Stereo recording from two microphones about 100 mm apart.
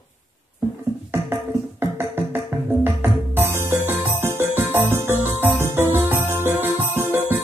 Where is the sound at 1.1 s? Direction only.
25° right (ahead or behind).